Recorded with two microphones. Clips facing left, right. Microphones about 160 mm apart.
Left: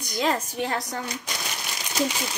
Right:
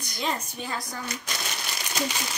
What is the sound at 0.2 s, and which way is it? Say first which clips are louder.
Speech: left 6 dB; 85° left.